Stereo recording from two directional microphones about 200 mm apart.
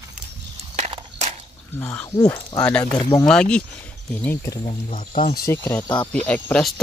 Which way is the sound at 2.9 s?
20° left (ahead or behind).